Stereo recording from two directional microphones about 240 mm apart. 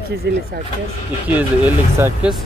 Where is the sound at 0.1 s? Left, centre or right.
Right.